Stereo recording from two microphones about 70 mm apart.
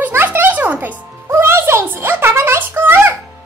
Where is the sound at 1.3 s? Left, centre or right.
Right.